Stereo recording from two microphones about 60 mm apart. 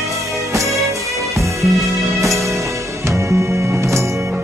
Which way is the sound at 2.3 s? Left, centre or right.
Right.